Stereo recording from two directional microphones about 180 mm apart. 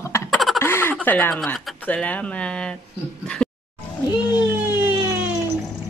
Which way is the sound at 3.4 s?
5° left (ahead or behind).